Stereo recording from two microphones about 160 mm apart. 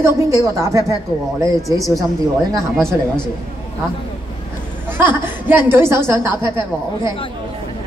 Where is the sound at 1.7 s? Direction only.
20° left (ahead or behind).